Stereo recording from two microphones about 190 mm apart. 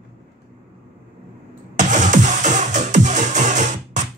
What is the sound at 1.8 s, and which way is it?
Music, 40° right (ahead or behind).